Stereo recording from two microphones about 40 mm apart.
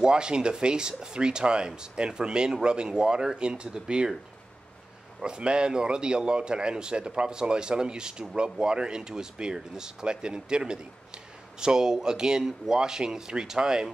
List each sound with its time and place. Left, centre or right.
0.0 s a man's voice: right
5.2 s a man's voice: right